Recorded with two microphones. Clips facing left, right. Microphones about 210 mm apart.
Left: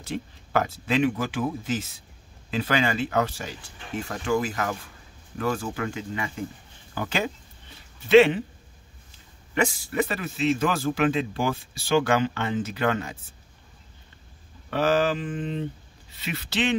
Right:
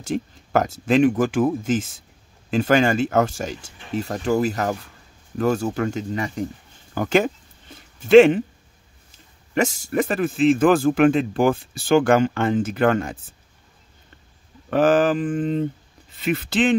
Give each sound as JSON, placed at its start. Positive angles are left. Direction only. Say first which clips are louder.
{"t": 0.0, "sound": "a man's voice", "louder": "right 7 dB", "side_deg": -45}
{"t": 7.0, "sound": "a sound", "louder": "right 9 dB", "side_deg": -50}
{"t": 9.5, "sound": "a man's voice", "louder": "right 4 dB", "side_deg": -45}
{"t": 14.7, "sound": "a man's voice", "louder": "right 6 dB", "side_deg": -50}